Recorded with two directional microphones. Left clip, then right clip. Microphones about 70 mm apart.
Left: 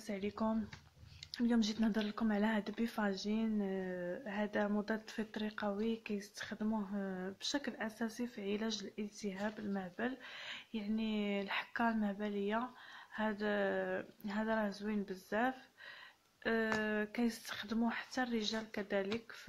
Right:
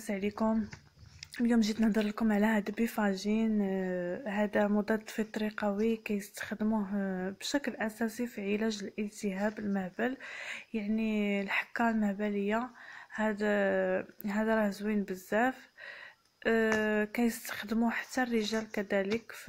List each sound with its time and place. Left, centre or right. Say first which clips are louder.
0.0 s speech: right 7 dB; right
6.1 s speech: right 6 dB; right
6.7 s speech: right 7 dB; right
8.6 s speech: right 6 dB; right
9.7 s speech: right 7 dB; right
16.6 s speech: right 7 dB; right
17.7 s speech: right 7 dB; right
18.1 s speech: right 7 dB; right